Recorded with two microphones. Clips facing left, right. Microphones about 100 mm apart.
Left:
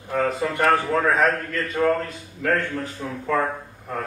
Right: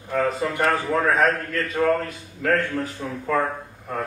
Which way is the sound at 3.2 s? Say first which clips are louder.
Even; 5° right (ahead or behind).